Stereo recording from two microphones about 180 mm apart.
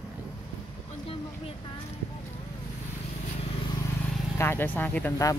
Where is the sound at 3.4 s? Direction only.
30° left (ahead or behind).